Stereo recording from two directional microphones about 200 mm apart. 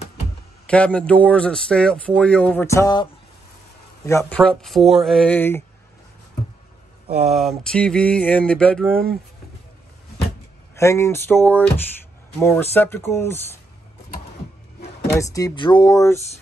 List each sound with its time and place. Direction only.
0.7 s a man's voice: 5° left (ahead or behind)
4.4 s a man's voice: 5° left (ahead or behind)
7.2 s a man's voice: centre (ahead or behind)
10.8 s speech: 15° left (ahead or behind)
15.1 s speech: 15° left (ahead or behind)